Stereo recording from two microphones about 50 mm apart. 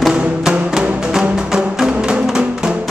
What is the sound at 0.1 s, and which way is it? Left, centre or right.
Music, centre.